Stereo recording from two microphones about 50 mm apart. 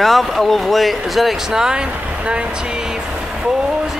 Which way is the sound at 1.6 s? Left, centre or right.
Centre.